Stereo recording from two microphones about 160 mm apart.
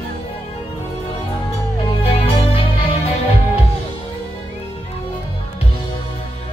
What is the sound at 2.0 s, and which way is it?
Music, 35° left (ahead or behind).